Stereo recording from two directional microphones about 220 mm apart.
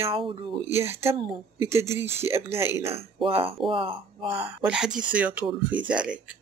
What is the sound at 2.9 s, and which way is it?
Speech, 25° right (ahead or behind).